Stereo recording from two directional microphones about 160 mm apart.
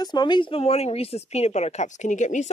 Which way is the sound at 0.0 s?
25° left (ahead or behind).